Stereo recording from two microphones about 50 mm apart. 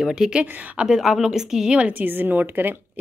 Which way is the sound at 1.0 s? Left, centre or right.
Centre.